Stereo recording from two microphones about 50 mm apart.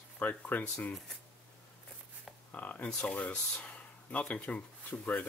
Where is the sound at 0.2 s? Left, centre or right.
Left.